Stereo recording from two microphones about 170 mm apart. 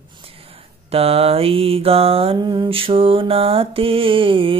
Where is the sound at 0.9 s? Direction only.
35° right (ahead or behind).